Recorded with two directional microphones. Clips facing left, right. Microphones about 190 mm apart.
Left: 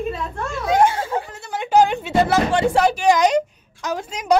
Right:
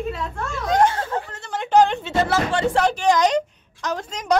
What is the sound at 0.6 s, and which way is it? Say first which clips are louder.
Music: left 2 dB; 10° left (ahead or behind).